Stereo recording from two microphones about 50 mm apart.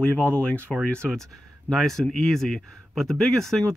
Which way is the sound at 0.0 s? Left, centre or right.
Left.